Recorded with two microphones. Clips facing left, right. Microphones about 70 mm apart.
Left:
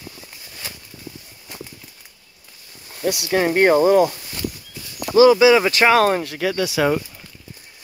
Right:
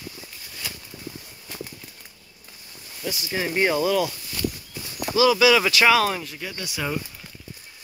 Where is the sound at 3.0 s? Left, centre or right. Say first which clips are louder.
Left 9 dB; left.